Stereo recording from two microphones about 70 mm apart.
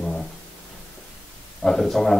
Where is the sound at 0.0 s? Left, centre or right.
Centre.